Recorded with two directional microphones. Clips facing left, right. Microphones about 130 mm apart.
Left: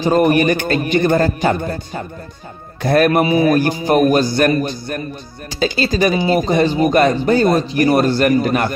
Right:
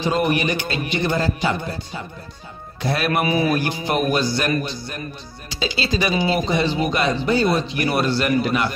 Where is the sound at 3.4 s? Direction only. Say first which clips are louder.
Left 7 dB; 45° left (ahead or behind).